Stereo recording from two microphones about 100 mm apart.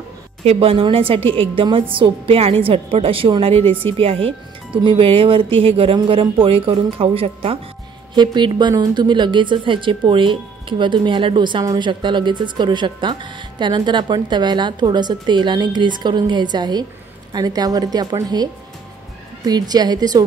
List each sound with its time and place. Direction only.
0.4 s a woman's voice: 85° right; by 1.9 s 60° right (ahead or behind)
2.0 s a woman's voice: 75° right (ahead or behind)
8.1 s a woman's voice: 50° right (ahead or behind)